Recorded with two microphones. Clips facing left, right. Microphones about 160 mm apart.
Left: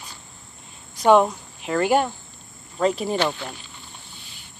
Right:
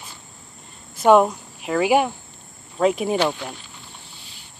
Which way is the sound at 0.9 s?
5° right (ahead or behind).